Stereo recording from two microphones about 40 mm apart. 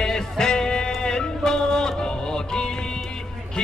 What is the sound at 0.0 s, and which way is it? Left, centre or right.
Music, centre.